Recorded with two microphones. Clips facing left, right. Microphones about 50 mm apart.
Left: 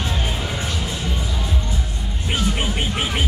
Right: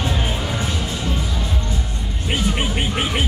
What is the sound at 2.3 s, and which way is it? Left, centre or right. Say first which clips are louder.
Music: right 1 dB; centre.